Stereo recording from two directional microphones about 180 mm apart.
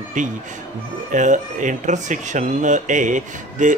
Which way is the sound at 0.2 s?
45° right (ahead or behind).